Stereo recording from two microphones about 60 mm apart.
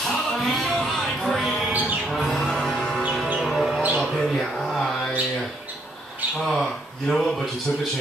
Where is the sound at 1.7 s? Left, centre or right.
Right.